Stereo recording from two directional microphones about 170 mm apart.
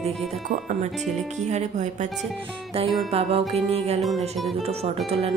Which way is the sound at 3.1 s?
35° right (ahead or behind).